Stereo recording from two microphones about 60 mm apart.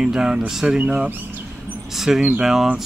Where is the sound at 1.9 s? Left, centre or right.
Centre.